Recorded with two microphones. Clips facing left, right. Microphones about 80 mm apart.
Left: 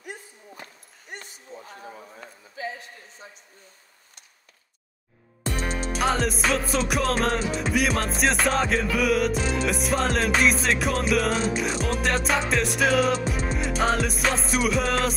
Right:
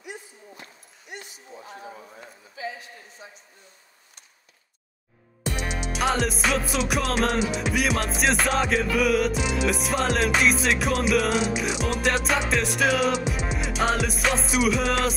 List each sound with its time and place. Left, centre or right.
0.0 s a sound: left
5.4 s music: centre
5.9 s music: centre